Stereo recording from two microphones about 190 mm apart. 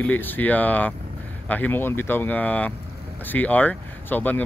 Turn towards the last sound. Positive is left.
turn(degrees=10)  # may be behind; listen again after turning